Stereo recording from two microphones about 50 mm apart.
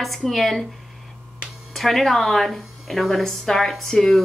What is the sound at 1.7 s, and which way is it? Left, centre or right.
Speech, centre.